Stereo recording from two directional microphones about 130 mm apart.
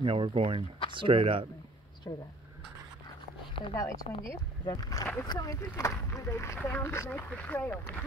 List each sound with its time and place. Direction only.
0.0 s speech: 45° right (ahead or behind)
2.1 s speech: 25° left (ahead or behind)
3.7 s speech: 25° left (ahead or behind)